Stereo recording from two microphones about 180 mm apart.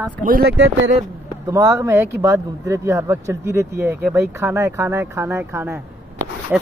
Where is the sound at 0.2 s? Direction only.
55° right (ahead or behind); by 0.9 s 80° right.